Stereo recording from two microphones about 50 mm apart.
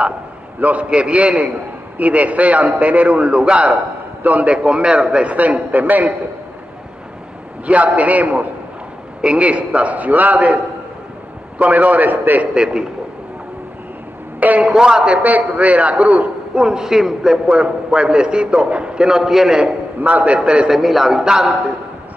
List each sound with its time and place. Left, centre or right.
0.6 s a man's voice: right
4.2 s a man's voice: right
4.6 s a man's voice: right
7.6 s a man's voice: right
12.5 s a man's voice: centre
14.6 s a man's voice: centre
15.2 s a man's voice: right
16.5 s a man's voice: centre
17.5 s a man's voice: centre
20.0 s a man's voice: right
20.3 s a man's voice: centre
20.7 s a man's voice: centre